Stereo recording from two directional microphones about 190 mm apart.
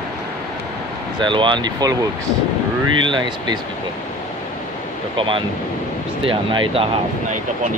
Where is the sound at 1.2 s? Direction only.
25° right (ahead or behind).